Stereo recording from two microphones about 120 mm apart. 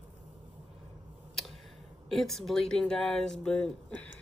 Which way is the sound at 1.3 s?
Centre (ahead or behind).